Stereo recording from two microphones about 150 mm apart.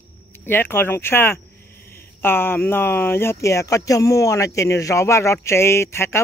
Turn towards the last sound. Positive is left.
turn(degrees=15)  # may be behind; listen again after turning